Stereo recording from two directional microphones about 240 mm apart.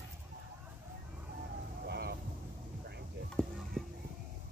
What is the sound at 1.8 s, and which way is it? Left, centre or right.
Vehicle, right.